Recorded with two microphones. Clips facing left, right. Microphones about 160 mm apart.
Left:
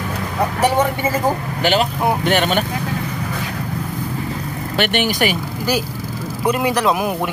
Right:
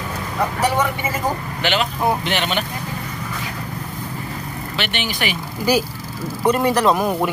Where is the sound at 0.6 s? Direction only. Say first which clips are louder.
Left 4 dB; 30° left (ahead or behind); by 2.6 s 45° left (ahead or behind).